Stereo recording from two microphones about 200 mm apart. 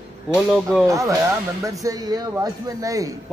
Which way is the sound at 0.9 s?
15° right (ahead or behind).